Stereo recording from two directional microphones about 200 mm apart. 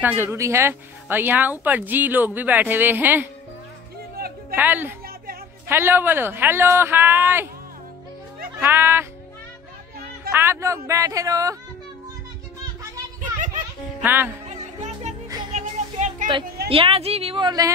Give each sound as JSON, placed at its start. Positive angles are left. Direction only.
{"t": 0.0, "sound": "speech", "side_deg": -10}
{"t": 4.6, "sound": "speech", "side_deg": -10}
{"t": 5.0, "sound": "a sound", "side_deg": -50}
{"t": 5.7, "sound": "speech", "side_deg": -10}
{"t": 8.5, "sound": "speech", "side_deg": -10}
{"t": 10.3, "sound": "speech", "side_deg": -10}
{"t": 14.0, "sound": "speech", "side_deg": -10}
{"t": 14.5, "sound": "music", "side_deg": -35}
{"t": 16.6, "sound": "a woman's voice", "side_deg": -25}